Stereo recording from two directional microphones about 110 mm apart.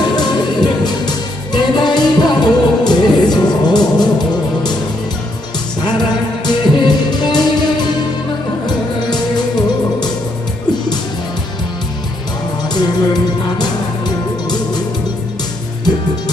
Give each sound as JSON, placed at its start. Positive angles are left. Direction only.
{"t": 0.0, "sound": "music", "side_deg": 40}
{"t": 6.4, "sound": "music", "side_deg": 40}
{"t": 12.6, "sound": "music", "side_deg": 40}